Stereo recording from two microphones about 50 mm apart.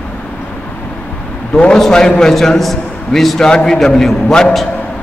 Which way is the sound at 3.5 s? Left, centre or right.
Centre.